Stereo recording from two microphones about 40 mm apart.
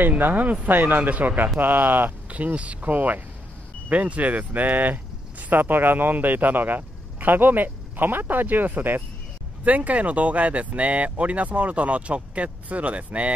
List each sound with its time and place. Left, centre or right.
0.2 s a man's voice: right
2.3 s a man's voice: right
9.7 s speech: right